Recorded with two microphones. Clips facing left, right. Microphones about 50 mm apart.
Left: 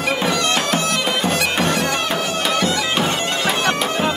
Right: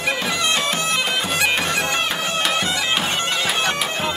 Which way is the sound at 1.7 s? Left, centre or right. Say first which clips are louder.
Left 1 dB; right.